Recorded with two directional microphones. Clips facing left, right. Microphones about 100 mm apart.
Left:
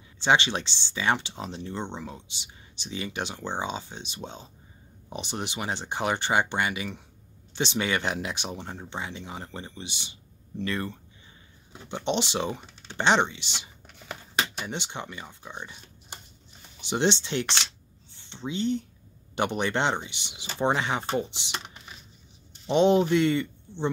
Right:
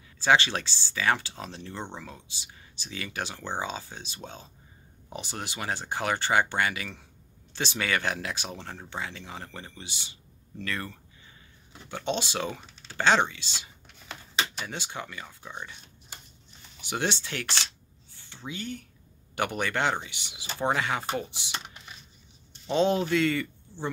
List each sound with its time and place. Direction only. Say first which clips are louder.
0.2 s speech: even; 20° left (ahead or behind)
14.7 s speech: left 2 dB; 20° left (ahead or behind)
16.8 s speech: left 5 dB; 25° left (ahead or behind)
22.7 s speech: left 4 dB; 20° left (ahead or behind)